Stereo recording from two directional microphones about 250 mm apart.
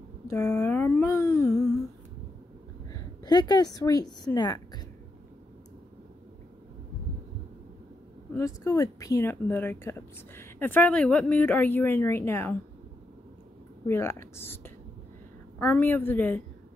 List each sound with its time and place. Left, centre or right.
0.3 s speech: centre
2.9 s a woman's voice: centre
8.3 s speech: centre
13.8 s speech: centre